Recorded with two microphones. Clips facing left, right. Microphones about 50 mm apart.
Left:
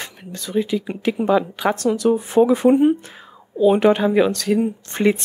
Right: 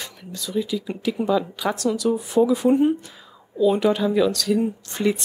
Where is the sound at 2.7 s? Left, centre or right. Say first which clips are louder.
Left 3 dB; left.